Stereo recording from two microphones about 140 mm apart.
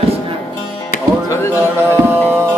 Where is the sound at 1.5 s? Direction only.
15° right (ahead or behind).